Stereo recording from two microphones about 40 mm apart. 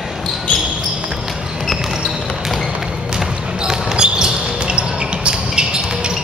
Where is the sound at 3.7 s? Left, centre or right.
Centre.